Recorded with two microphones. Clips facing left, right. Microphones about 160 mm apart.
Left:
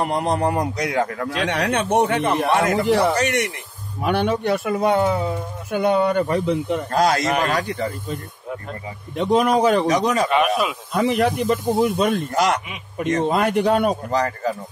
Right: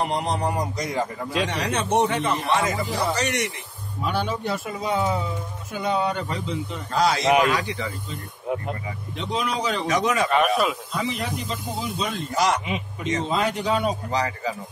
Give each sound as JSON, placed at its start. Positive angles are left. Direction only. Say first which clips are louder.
{"t": 0.0, "sound": "speech", "louder": "left 4 dB", "side_deg": 55}
{"t": 1.4, "sound": "a man's voice", "louder": "left 5 dB", "side_deg": 60}
{"t": 9.8, "sound": "speech", "louder": "left 4 dB", "side_deg": 35}
{"t": 10.9, "sound": "speech", "louder": "left 9 dB", "side_deg": 60}